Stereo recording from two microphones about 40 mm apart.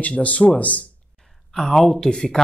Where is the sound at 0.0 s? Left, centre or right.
Left.